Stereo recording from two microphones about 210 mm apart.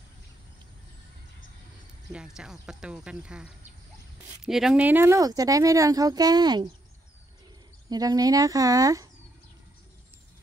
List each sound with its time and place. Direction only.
2.1 s speech: 5° right (ahead or behind); by 6.7 s 20° right (ahead or behind)
7.9 s speech: 15° right (ahead or behind)